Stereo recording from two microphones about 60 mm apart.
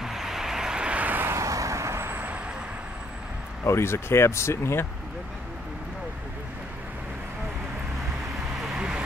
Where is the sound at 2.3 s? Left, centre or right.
Right.